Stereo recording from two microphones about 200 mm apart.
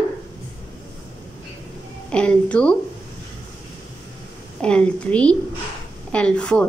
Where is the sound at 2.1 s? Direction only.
5° left (ahead or behind).